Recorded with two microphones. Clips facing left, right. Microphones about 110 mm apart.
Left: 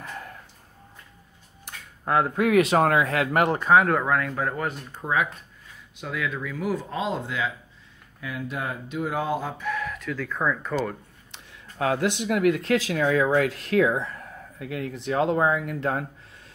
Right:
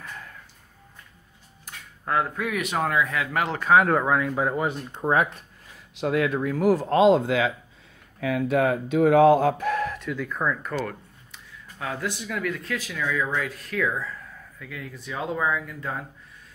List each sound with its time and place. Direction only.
2.3 s speech: 75° left (ahead or behind)
2.8 s speech: 65° left (ahead or behind)
3.6 s speech: centre (ahead or behind)
5.9 s speech: 60° right (ahead or behind)
6.3 s speech: 45° right (ahead or behind)
6.6 s speech: 75° right (ahead or behind)
9.6 s a sound: 45° right (ahead or behind)
10.0 s speech: 10° right (ahead or behind)
11.8 s speech: 65° left (ahead or behind); by 12.9 s 85° left
12.9 s speech: 55° left (ahead or behind); by 13.8 s 85° left
14.6 s speech: 60° left (ahead or behind)